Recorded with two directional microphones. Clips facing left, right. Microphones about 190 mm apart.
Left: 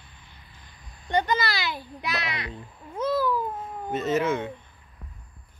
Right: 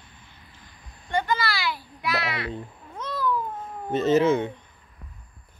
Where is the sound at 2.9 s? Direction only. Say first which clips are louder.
Left 4 dB; 10° left (ahead or behind).